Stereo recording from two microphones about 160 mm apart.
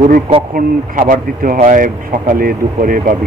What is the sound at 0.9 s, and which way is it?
Speech, 55° right (ahead or behind).